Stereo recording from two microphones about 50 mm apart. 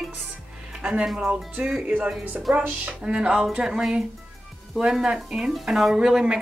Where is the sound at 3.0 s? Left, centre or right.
Centre.